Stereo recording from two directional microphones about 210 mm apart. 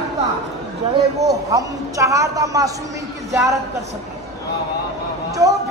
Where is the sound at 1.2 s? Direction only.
15° right (ahead or behind).